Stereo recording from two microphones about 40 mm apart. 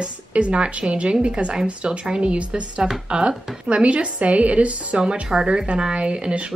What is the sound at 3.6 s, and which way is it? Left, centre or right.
A woman's voice, right.